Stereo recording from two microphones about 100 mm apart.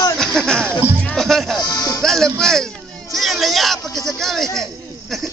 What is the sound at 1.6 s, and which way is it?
Music, 40° left (ahead or behind).